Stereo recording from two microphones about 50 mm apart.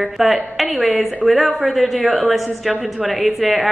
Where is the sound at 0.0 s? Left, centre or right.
Centre.